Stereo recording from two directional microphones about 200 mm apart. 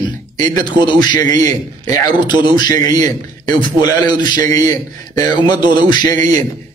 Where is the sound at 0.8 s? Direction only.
20° left (ahead or behind).